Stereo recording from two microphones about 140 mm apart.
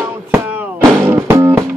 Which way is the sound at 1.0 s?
20° right (ahead or behind).